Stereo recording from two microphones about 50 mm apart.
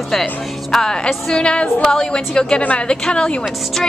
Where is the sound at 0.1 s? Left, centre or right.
Centre.